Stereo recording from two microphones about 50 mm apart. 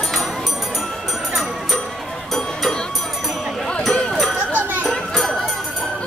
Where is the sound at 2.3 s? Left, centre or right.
Centre.